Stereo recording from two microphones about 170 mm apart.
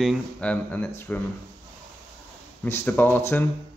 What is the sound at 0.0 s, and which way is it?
Speech, 5° left (ahead or behind).